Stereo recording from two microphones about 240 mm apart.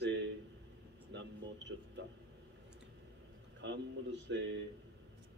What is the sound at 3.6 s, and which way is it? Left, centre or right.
Speech, right.